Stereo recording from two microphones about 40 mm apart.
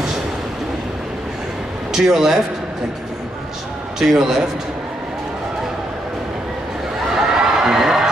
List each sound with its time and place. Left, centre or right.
1.9 s a man's voice: centre
4.1 s a man's voice: centre
7.2 s a sound: centre